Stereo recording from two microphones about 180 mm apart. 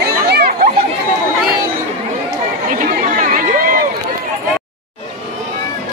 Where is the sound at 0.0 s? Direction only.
65° right (ahead or behind).